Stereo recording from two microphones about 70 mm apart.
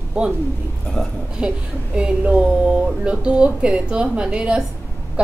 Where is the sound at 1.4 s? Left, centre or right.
Centre.